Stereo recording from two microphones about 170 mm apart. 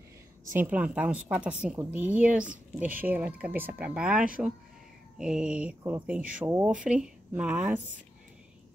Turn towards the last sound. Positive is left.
turn(degrees=-10)  # may be behind; listen again after turning